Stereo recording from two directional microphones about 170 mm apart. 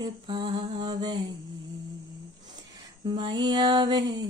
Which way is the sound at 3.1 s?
25° right (ahead or behind).